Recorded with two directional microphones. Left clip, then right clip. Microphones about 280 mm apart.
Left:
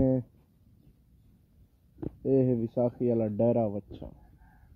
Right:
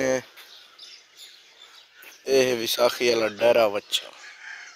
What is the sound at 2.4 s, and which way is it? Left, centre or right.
Speech, right.